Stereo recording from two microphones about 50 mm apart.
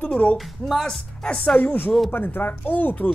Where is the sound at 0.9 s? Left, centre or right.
Centre.